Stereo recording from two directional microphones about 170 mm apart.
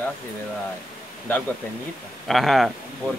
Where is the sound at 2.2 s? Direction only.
Centre (ahead or behind).